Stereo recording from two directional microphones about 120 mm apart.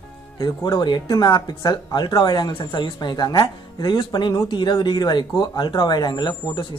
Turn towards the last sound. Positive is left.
turn(degrees=40)  # may be behind; listen again after turning